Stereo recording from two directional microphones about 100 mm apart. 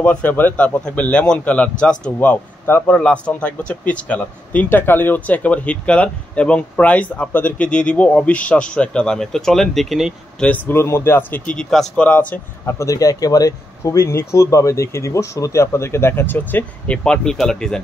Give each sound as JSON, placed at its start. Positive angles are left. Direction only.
{"t": 0.0, "sound": "speech", "side_deg": 15}
{"t": 2.9, "sound": "speech", "side_deg": 10}
{"t": 10.4, "sound": "speech", "side_deg": 15}
{"t": 12.6, "sound": "speech", "side_deg": 30}